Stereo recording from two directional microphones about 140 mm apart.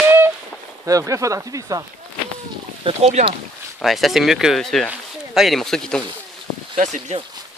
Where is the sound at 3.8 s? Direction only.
Centre (ahead or behind).